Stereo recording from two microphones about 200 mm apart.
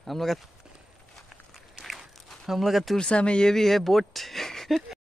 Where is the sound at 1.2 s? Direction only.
Centre (ahead or behind).